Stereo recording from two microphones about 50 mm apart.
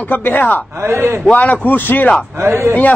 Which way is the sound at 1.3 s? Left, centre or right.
Left.